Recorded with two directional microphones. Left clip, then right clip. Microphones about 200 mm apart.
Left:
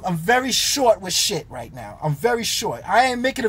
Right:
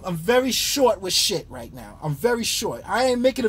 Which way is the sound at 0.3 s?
10° left (ahead or behind).